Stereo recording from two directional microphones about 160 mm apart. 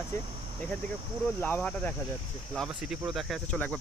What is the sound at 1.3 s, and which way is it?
Speech, 10° left (ahead or behind).